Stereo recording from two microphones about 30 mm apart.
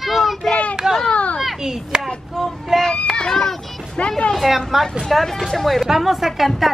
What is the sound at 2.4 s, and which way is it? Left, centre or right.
Speech, centre.